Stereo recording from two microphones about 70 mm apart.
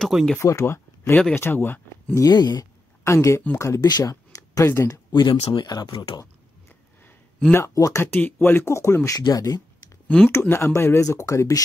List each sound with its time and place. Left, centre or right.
0.1 s speech: centre
0.4 s speech: left
2.1 s speech: left
3.0 s speech: left
3.8 s speech: left
4.6 s speech: left
5.1 s speech: left
7.5 s speech: left
8.2 s speech: left
9.2 s speech: left
10.0 s speech: centre
10.5 s speech: left
11.1 s speech: left